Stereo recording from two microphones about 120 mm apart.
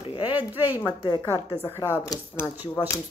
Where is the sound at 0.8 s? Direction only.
35° left (ahead or behind).